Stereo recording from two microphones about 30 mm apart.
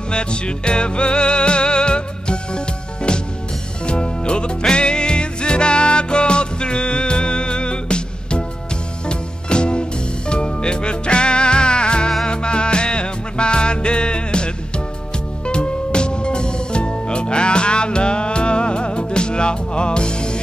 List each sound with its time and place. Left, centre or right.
0.1 s music: left